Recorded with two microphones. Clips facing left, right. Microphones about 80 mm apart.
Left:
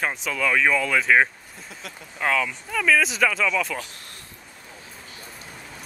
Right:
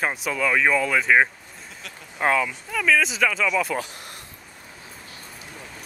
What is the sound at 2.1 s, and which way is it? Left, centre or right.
Speech, right.